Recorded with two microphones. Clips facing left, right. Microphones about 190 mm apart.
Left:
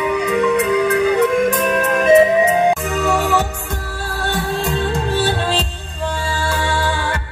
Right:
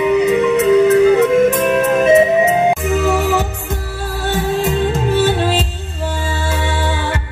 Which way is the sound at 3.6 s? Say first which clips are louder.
Right 3 dB; 20° right (ahead or behind).